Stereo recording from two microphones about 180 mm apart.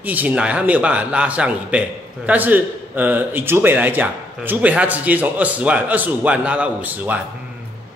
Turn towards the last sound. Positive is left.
turn(degrees=-10)  # may be behind; listen again after turning